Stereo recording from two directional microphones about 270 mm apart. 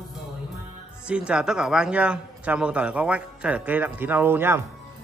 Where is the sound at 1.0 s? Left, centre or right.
Centre.